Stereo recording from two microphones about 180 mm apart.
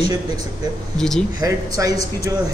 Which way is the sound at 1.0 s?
5° left (ahead or behind).